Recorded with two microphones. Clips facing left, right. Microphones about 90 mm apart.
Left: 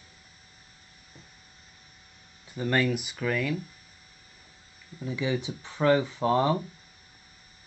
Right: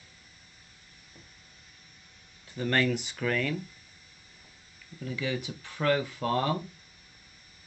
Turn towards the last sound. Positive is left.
turn(degrees=20)  # may be behind; listen again after turning